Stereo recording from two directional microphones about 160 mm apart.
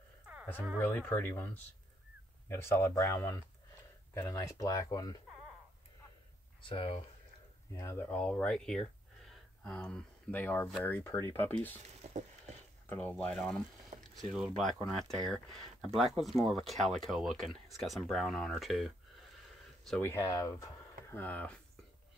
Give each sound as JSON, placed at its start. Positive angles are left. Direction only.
{"t": 0.7, "sound": "speech", "side_deg": 10}
{"t": 6.6, "sound": "speech", "side_deg": 35}
{"t": 7.7, "sound": "speech", "side_deg": 15}
{"t": 12.1, "sound": "a sound", "side_deg": -45}
{"t": 12.8, "sound": "speech", "side_deg": 10}
{"t": 20.0, "sound": "speech", "side_deg": 15}